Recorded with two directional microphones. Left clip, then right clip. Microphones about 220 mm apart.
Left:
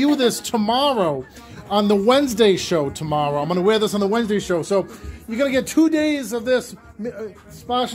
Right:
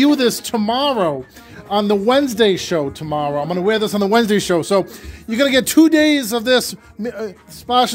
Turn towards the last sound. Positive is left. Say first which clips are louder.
# right 7 dB
turn(degrees=-50)  # may be behind; listen again after turning